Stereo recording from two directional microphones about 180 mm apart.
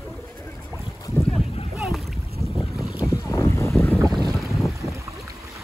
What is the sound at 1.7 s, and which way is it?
Boat, 10° right (ahead or behind).